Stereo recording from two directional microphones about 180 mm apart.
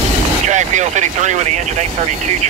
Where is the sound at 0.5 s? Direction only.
40° right (ahead or behind).